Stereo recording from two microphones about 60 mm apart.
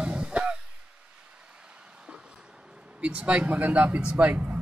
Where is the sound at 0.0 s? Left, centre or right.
Centre.